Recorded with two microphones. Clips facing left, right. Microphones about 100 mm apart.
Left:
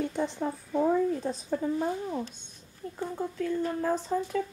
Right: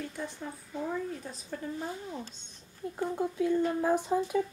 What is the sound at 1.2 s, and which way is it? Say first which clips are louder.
Speech: left 9 dB; 30° left (ahead or behind).